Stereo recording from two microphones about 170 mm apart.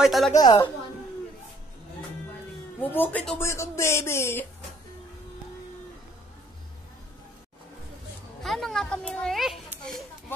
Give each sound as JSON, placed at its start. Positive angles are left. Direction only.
{"t": 0.0, "sound": "a woman's voice", "side_deg": 0}
{"t": 0.4, "sound": "a woman's voice", "side_deg": 25}
{"t": 2.8, "sound": "speech", "side_deg": 10}
{"t": 8.4, "sound": "a woman's voice", "side_deg": 0}